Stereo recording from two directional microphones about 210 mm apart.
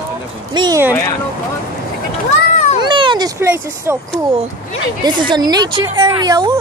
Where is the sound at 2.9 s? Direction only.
20° right (ahead or behind).